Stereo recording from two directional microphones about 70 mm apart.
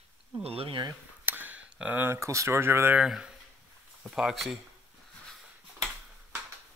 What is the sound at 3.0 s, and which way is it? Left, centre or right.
Speech, centre.